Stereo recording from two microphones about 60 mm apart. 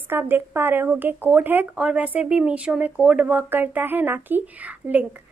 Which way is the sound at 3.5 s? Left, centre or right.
Right.